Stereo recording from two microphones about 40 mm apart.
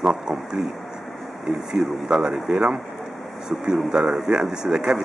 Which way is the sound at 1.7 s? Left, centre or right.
Centre.